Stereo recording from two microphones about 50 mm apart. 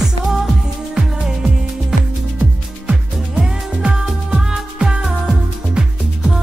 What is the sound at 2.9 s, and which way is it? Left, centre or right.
Music, centre.